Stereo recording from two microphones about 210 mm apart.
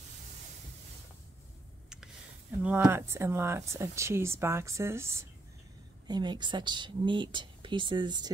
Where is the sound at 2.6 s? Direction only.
10° right (ahead or behind).